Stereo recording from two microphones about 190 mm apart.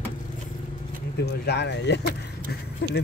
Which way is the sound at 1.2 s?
60° left (ahead or behind).